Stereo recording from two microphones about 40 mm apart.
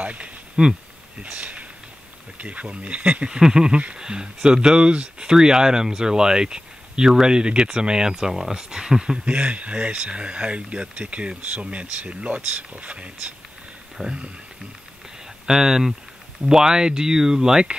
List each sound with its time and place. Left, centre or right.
0.0 s speech: right
0.6 s speech: right
1.2 s speech: right
3.3 s speech: centre
9.2 s speech: right
15.4 s speech: centre